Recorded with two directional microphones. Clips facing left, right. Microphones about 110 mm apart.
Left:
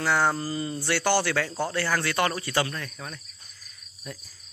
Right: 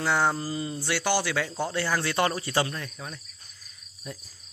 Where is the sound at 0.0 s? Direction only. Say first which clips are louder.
Left 1 dB; 15° right (ahead or behind).